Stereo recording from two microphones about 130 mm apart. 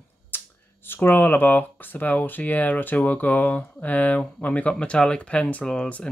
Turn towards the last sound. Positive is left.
turn(degrees=5)  # may be behind; listen again after turning